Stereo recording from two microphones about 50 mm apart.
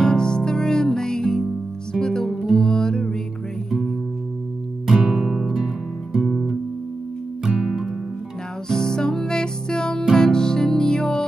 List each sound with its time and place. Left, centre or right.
0.0 s music: centre
2.2 s music: centre
2.6 s music: centre
4.8 s music: centre
7.4 s music: centre
8.6 s music: centre